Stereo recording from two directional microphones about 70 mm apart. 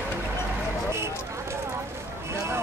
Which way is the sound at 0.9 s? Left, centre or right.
Right.